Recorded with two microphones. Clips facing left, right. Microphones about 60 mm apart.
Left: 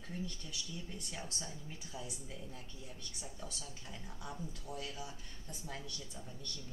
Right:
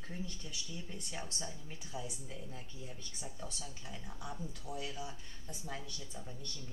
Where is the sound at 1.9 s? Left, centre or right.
Right.